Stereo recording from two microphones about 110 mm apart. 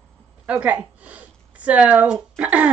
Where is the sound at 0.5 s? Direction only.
15° right (ahead or behind).